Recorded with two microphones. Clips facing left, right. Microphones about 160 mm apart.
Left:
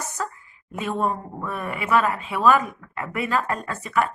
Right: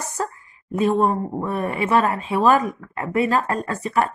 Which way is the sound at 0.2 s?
40° right (ahead or behind).